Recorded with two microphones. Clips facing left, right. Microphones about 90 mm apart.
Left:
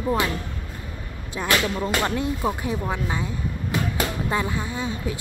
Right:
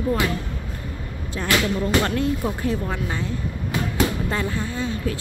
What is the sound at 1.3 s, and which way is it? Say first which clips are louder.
Speech: right 1 dB; 15° left (ahead or behind).